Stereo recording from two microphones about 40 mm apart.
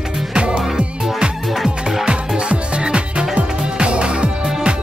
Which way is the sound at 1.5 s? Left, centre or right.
Centre.